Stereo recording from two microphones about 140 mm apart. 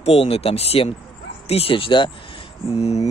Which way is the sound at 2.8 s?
50° left (ahead or behind).